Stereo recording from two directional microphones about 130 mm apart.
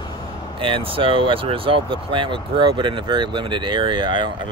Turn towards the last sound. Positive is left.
turn(degrees=-40)  # may be behind; listen again after turning